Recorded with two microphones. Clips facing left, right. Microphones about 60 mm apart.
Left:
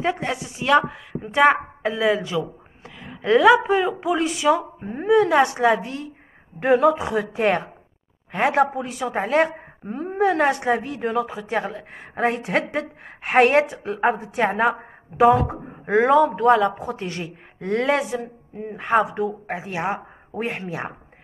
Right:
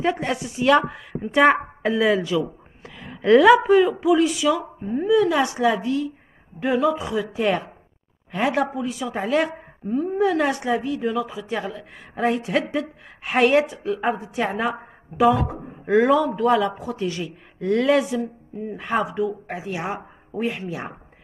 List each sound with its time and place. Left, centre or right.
0.0 s speech: centre
3.2 s a woman's voice: centre
3.6 s speech: left